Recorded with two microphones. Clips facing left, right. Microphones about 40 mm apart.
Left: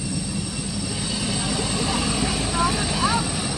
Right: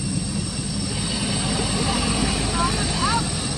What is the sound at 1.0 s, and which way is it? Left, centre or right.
Vehicle, centre.